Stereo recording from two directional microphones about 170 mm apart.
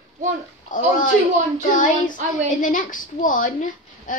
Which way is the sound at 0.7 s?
50° left (ahead or behind).